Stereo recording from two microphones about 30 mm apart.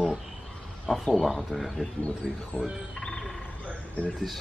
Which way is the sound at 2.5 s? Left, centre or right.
Left.